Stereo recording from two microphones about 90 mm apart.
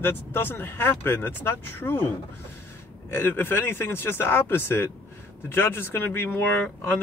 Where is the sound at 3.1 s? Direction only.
25° left (ahead or behind).